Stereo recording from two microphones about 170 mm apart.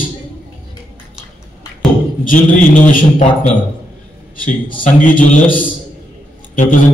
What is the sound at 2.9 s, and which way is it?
Speech, 45° left (ahead or behind).